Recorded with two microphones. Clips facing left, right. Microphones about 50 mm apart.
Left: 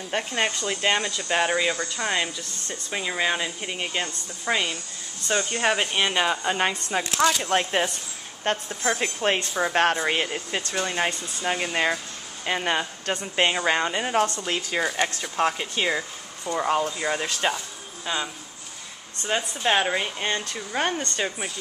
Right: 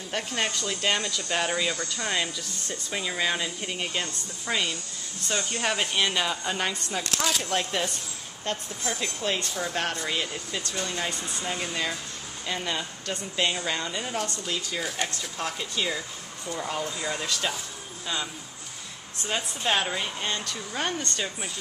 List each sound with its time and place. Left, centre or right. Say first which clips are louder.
0.1 s speech: left 3 dB; centre
7.0 s speech: left 8 dB; centre
7.4 s speech: left 5 dB; left
18.0 s speech: left 3 dB; centre